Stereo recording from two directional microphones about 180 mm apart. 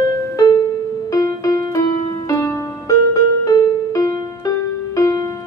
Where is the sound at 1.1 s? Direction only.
20° left (ahead or behind).